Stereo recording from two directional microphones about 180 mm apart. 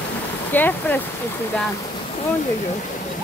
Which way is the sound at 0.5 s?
10° left (ahead or behind).